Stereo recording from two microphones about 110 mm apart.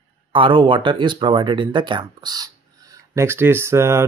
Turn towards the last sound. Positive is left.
turn(degrees=-25)  # may be behind; listen again after turning